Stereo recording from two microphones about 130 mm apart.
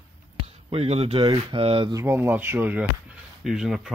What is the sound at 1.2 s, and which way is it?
Speech, 35° right (ahead or behind).